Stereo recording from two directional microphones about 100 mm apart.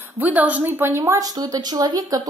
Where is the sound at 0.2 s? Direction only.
15° right (ahead or behind).